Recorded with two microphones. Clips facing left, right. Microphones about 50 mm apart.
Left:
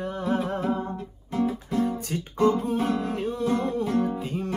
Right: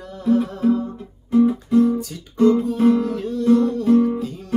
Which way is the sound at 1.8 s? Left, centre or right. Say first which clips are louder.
Right 8 dB; left.